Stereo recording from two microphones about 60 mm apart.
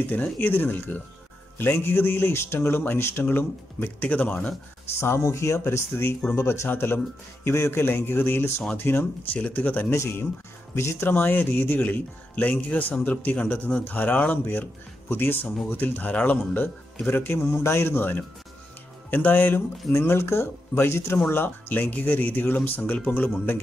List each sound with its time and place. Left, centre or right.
0.1 s a man's voice: left
4.0 s speech: left
5.0 s speech: left
6.7 s a man's voice: left
9.8 s speech: left
11.1 s a man's voice: left
17.4 s a man's voice: left
19.9 s speech: left
21.3 s speech: left